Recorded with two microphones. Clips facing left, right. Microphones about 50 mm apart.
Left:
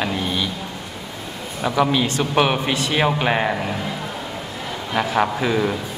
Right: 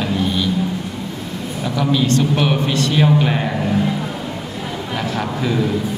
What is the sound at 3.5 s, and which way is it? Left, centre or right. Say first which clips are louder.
Speech: right 4 dB; centre.